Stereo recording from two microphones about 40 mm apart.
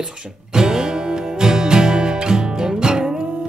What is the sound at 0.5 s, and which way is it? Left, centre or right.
Music, centre.